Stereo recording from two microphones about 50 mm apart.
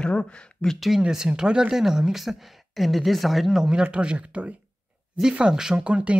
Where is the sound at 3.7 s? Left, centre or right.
Right.